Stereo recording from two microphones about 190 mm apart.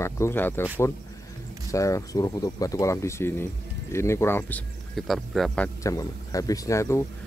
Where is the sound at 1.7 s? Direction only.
15° left (ahead or behind).